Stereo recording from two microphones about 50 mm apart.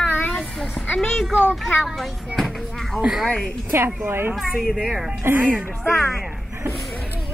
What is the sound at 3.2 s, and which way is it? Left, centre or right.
Speech, centre.